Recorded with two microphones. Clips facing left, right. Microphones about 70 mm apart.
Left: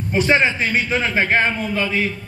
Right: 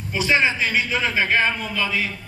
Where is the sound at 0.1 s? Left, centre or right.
Left.